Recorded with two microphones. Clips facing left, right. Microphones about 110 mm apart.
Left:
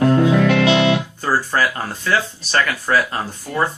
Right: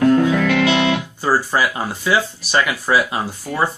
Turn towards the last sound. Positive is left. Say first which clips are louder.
# right 1 dB
turn(degrees=-10)  # may be behind; listen again after turning